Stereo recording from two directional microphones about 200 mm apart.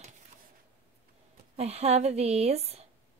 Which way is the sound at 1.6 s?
30° right (ahead or behind).